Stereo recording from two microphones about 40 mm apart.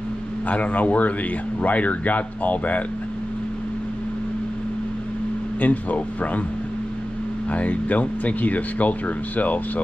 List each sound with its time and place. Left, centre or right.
0.5 s speech: left
5.6 s speech: left
7.5 s speech: left